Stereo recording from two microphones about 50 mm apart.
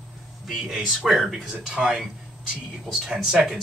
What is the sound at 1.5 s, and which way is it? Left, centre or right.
Speech, centre.